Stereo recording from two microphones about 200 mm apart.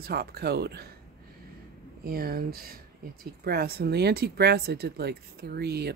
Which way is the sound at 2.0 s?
50° right (ahead or behind).